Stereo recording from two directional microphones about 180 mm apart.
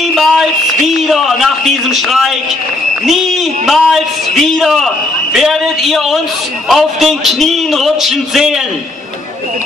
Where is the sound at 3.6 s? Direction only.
Centre (ahead or behind).